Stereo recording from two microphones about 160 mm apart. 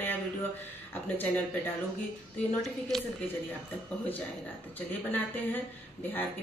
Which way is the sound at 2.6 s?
Centre (ahead or behind).